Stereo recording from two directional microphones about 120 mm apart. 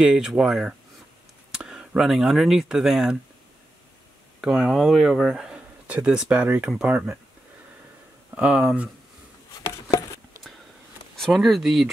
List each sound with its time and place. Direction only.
0.0 s speech: 5° right (ahead or behind)
4.4 s speech: 5° right (ahead or behind)
8.4 s speech: 10° right (ahead or behind)
9.8 s a sound: 30° left (ahead or behind)
11.1 s speech: centre (ahead or behind)